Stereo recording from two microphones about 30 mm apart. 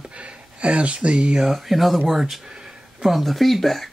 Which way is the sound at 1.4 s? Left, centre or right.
Centre.